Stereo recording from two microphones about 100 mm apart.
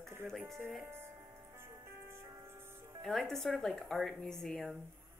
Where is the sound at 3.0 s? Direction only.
5° left (ahead or behind).